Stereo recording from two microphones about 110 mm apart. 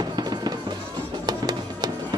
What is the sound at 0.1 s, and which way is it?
Music, 40° right (ahead or behind).